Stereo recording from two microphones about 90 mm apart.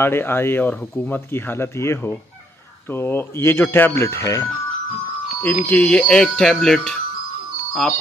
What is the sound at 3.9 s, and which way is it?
Speech, 35° left (ahead or behind).